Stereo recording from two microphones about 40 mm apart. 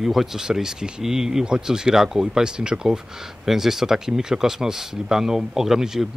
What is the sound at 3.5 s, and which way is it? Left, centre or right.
A man's voice, centre.